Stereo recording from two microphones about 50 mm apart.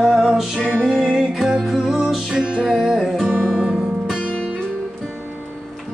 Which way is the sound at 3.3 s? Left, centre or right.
Right.